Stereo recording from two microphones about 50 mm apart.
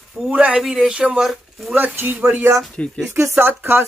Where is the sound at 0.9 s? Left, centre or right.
Right.